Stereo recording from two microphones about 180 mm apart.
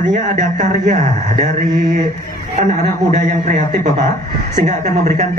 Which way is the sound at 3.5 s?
45° right (ahead or behind).